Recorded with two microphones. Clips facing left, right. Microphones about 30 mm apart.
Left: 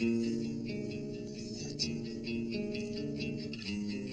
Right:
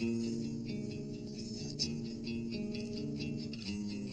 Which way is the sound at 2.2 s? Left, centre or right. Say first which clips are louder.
Left 4 dB; left.